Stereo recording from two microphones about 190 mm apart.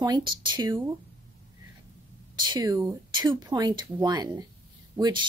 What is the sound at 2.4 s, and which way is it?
Speech, 20° right (ahead or behind).